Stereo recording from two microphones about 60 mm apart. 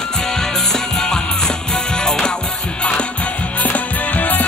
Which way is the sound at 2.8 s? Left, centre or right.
Centre.